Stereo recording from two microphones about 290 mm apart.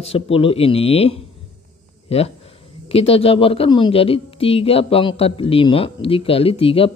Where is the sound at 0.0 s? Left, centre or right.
Centre.